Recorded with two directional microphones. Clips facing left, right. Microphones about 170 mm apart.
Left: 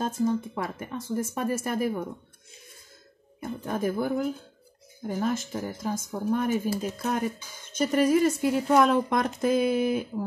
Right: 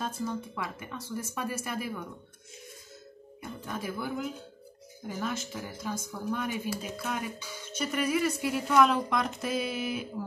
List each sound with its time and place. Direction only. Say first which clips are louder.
0.6 s speech: left 5 dB; 45° left (ahead or behind)
3.3 s speech: left 7 dB; 50° left (ahead or behind)
8.9 s speech: left 5 dB; 50° left (ahead or behind)